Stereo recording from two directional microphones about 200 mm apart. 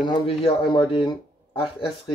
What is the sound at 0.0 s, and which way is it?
Speech, 25° left (ahead or behind).